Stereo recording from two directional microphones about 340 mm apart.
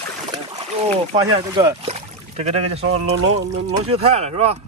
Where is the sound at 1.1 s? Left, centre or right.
Centre.